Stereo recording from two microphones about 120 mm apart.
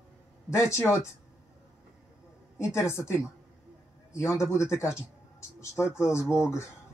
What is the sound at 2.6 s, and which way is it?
A man's voice, 25° left (ahead or behind).